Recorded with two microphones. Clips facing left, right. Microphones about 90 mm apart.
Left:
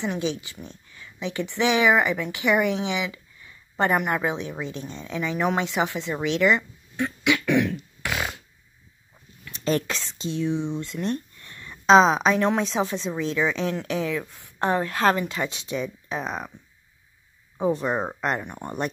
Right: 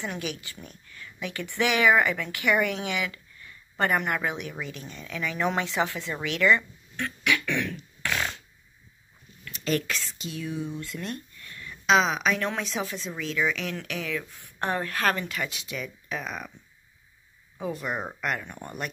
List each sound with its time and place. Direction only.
0.0 s speech: 20° left (ahead or behind)
5.6 s a sound: 20° left (ahead or behind)
9.5 s speech: 30° left (ahead or behind)
17.6 s speech: 30° left (ahead or behind)